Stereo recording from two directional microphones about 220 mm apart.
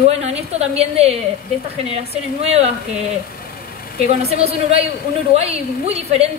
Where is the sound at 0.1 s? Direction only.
30° right (ahead or behind).